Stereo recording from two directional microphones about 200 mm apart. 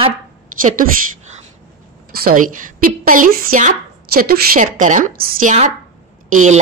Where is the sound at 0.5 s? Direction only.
40° right (ahead or behind).